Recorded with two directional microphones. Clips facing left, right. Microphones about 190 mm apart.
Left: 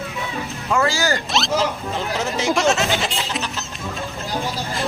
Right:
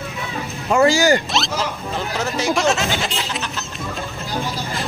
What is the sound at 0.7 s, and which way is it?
Speech, 20° right (ahead or behind).